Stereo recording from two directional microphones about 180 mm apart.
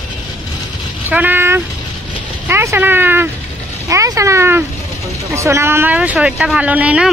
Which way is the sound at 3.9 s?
15° right (ahead or behind).